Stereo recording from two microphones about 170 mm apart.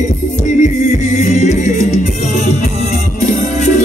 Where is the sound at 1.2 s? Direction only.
40° left (ahead or behind).